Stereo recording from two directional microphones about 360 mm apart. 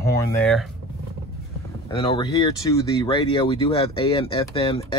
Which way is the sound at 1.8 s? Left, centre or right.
Centre.